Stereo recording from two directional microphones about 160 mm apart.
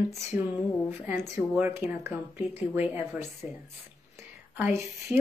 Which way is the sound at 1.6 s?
15° right (ahead or behind).